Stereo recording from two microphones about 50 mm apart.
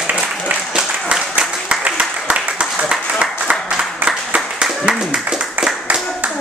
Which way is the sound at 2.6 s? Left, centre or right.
Centre.